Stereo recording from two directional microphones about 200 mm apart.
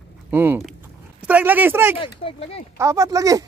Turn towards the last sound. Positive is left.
turn(degrees=-15)  # may be behind; listen again after turning